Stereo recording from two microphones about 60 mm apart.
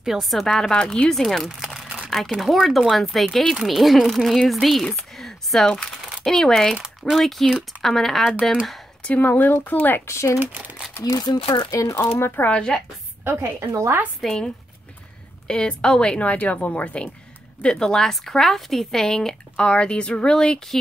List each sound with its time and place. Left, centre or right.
0.0 s speech: centre
2.0 s a sound: centre
2.3 s speech: centre
6.8 s a woman's voice: centre
9.0 s speech: left
10.0 s speech: left
10.4 s crumpling: right
11.1 s speech: left
11.9 s speech: left
12.4 s a woman's voice: centre
13.2 s a woman's voice: right
14.2 s a woman's voice: centre